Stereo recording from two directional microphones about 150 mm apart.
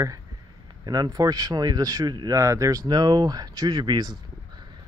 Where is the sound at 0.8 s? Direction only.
25° right (ahead or behind).